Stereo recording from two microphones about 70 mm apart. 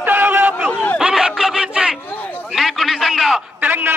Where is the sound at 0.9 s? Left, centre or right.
Centre.